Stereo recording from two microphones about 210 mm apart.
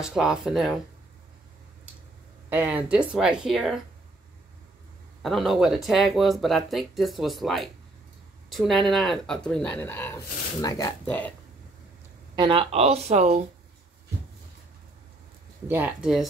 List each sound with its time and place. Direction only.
0.0 s speech: centre (ahead or behind)
2.5 s speech: 5° right (ahead or behind)
5.2 s speech: centre (ahead or behind)
12.4 s speech: 25° right (ahead or behind)
15.7 s speech: 5° right (ahead or behind)